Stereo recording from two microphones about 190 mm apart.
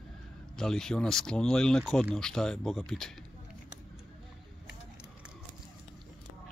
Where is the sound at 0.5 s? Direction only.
5° left (ahead or behind).